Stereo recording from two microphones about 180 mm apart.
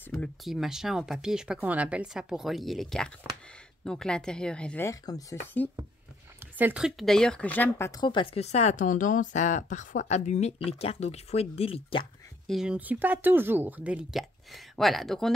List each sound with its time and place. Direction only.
0.0 s speech: 5° left (ahead or behind)
6.4 s speech: 10° right (ahead or behind); by 12.1 s 30° left (ahead or behind)
12.4 s speech: 5° right (ahead or behind)